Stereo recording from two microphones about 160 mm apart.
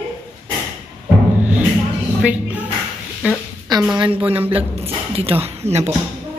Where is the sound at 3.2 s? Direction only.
5° left (ahead or behind).